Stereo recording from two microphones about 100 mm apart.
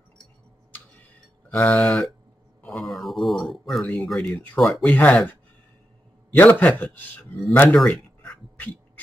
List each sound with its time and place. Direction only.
1.5 s speech: 5° left (ahead or behind)
2.7 s a sound: centre (ahead or behind)
3.8 s a man's voice: 5° left (ahead or behind)
4.6 s speech: centre (ahead or behind)
4.8 s a man's voice: 15° left (ahead or behind)
7.7 s a sound: 10° left (ahead or behind)